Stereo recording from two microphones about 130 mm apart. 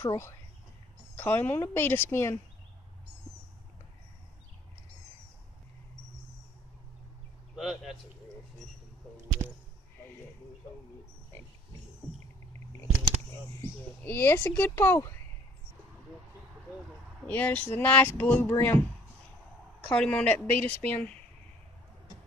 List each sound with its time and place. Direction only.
0.0 s speech: 20° left (ahead or behind)
7.5 s speech: centre (ahead or behind)
9.4 s a sound: 25° right (ahead or behind)
13.6 s speech: 15° left (ahead or behind)
17.3 s speech: 10° left (ahead or behind)
19.9 s speech: 10° left (ahead or behind)